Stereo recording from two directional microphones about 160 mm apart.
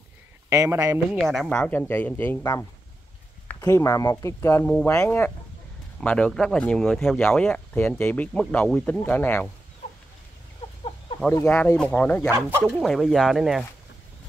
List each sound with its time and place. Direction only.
0.5 s speech: 20° right (ahead or behind)
1.2 s speech: centre (ahead or behind)
3.4 s speech: 20° left (ahead or behind)
11.3 s speech: 10° left (ahead or behind)
12.3 s speech: 15° right (ahead or behind)
12.7 s speech: centre (ahead or behind)